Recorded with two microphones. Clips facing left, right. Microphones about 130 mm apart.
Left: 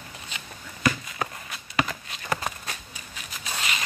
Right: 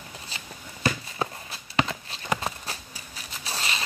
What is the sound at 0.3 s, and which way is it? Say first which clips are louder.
Walk: even; 35° right (ahead or behind).